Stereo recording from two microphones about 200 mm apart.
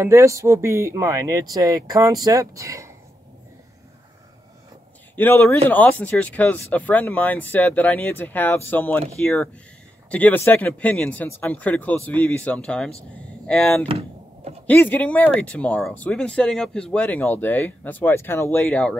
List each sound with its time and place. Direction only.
0.0 s speech: 15° right (ahead or behind)
5.1 s speech: 10° left (ahead or behind)
13.8 s a sound: 30° right (ahead or behind)
14.7 s speech: 10° left (ahead or behind)